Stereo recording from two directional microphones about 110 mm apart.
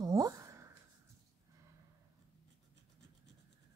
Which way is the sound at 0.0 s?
30° right (ahead or behind).